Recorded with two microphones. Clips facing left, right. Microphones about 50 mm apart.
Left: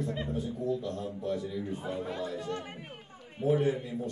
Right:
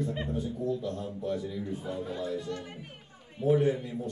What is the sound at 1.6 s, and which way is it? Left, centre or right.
Speech, centre.